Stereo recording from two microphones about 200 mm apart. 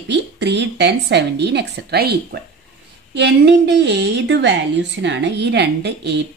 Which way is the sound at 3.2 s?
60° right (ahead or behind).